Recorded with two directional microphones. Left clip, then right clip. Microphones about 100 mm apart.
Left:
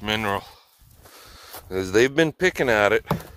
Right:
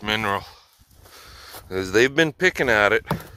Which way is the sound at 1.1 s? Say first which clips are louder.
Right 2 dB; 45° left (ahead or behind).